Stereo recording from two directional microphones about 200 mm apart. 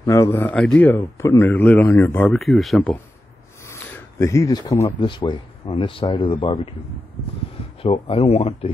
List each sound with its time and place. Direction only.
0.0 s speech: 15° left (ahead or behind)
7.8 s speech: 30° left (ahead or behind)